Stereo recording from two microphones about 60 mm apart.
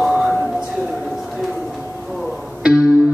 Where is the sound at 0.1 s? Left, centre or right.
Centre.